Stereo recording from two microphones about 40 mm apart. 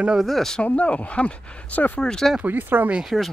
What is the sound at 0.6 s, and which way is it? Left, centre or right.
Speech, left.